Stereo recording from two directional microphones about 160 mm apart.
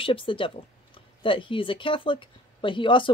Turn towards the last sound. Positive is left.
turn(degrees=30)  # may be behind; listen again after turning